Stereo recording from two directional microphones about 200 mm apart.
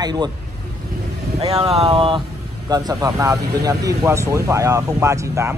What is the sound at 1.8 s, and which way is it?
Speech, 30° right (ahead or behind).